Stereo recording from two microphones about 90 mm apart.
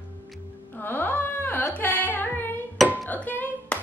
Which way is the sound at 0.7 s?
20° left (ahead or behind).